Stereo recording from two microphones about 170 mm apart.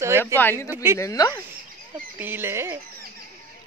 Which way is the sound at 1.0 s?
20° left (ahead or behind).